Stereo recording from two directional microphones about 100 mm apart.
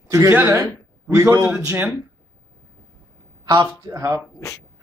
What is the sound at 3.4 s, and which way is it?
Speech, 45° right (ahead or behind).